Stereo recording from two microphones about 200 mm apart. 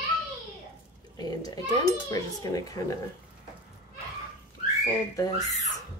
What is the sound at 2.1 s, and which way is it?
Speech, 15° left (ahead or behind).